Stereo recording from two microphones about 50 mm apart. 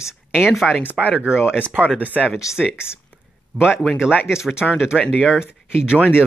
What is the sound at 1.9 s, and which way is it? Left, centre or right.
Speech, right.